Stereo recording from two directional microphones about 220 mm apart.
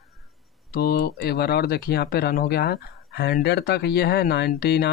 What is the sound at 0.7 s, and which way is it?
Speech, 45° left (ahead or behind).